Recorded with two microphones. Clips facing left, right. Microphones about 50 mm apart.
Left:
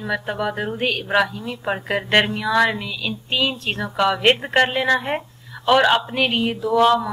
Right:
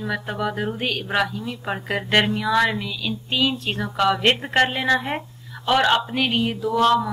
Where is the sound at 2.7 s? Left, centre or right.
Centre.